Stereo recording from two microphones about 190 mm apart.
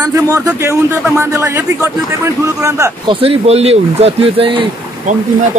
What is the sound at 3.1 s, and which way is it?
Speech, 30° right (ahead or behind).